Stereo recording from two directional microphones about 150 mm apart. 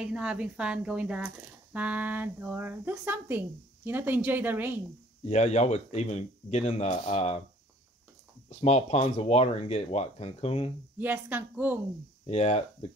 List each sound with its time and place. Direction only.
0.0 s speech: 5° right (ahead or behind)
5.2 s speech: 50° left (ahead or behind)
8.5 s speech: 45° left (ahead or behind)
11.0 s speech: 10° right (ahead or behind)
12.3 s speech: 45° left (ahead or behind)